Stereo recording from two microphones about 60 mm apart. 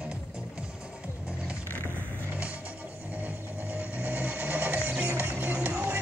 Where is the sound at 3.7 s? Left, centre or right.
Right.